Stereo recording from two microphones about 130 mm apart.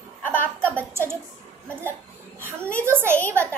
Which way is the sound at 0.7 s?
20° right (ahead or behind).